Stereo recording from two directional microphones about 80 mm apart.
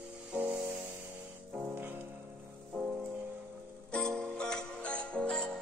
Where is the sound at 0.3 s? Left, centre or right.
Right.